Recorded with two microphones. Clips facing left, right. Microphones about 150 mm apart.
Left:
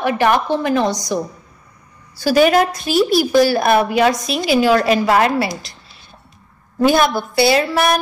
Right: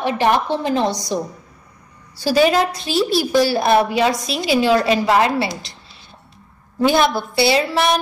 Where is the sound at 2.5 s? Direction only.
30° right (ahead or behind).